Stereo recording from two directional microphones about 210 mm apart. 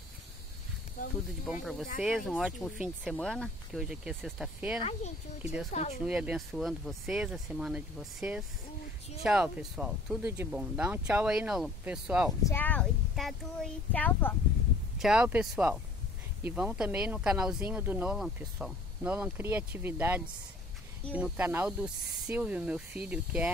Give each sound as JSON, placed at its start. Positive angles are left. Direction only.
{"t": 1.0, "sound": "a sound", "side_deg": 35}
{"t": 1.4, "sound": "speech", "side_deg": 0}
{"t": 4.7, "sound": "speech", "side_deg": 30}
{"t": 5.4, "sound": "speech", "side_deg": -5}
{"t": 5.7, "sound": "speech", "side_deg": 30}
{"t": 6.0, "sound": "speech", "side_deg": -5}
{"t": 12.4, "sound": "speech", "side_deg": 10}
{"t": 15.0, "sound": "speech", "side_deg": -5}